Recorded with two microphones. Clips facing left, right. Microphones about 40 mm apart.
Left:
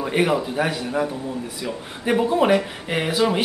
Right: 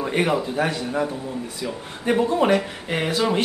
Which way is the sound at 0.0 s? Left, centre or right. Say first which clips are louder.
Left 1 dB; centre.